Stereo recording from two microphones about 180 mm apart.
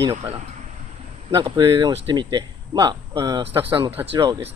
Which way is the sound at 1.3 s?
20° right (ahead or behind).